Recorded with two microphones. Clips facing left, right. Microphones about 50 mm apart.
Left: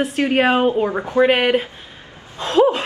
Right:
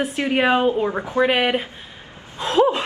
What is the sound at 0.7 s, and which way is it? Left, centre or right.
Speech, left.